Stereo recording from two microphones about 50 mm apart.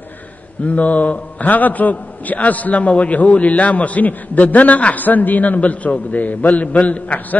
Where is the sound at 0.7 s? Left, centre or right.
Left.